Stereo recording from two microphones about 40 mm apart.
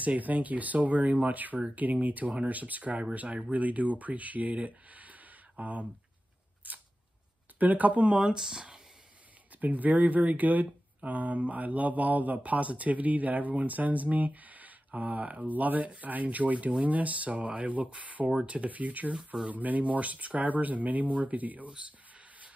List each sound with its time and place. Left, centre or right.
0.2 s speech: right
6.7 s camera: right
7.5 s speech: right
8.2 s speech: centre
9.6 s speech: right